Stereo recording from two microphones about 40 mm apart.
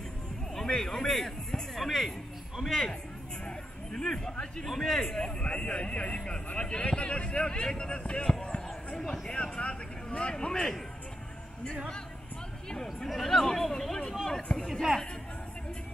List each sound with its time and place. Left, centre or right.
0.6 s speech: centre
3.4 s speech: centre
5.4 s a man's voice: left
12.7 s speech: centre
14.7 s speech: centre